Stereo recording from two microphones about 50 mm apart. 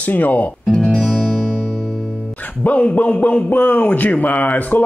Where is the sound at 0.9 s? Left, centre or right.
Centre.